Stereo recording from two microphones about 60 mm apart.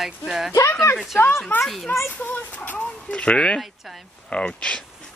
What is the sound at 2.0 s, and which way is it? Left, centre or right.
Speech, left.